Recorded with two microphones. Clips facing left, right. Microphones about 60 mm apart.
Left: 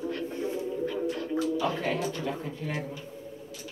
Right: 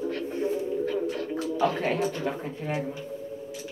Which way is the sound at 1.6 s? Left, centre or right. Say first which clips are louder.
Right 4 dB; right.